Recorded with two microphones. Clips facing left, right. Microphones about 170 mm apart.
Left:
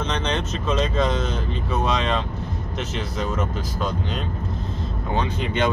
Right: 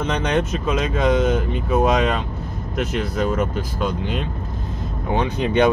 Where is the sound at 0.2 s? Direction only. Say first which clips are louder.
Right 5 dB; 10° right (ahead or behind).